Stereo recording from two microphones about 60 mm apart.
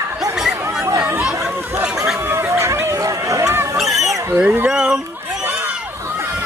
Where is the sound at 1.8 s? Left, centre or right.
Centre.